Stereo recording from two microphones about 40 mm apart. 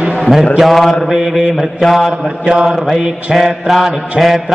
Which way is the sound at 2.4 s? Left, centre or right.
Right.